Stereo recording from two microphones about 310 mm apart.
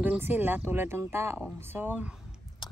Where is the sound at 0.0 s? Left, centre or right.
Centre.